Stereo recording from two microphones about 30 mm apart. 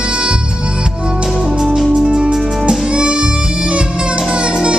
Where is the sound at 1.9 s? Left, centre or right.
Right.